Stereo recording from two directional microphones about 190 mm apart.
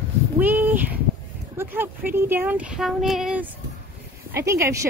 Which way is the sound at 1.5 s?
10° right (ahead or behind).